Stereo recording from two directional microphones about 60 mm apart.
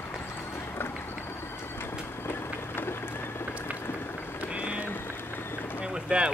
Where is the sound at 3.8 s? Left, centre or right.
Left.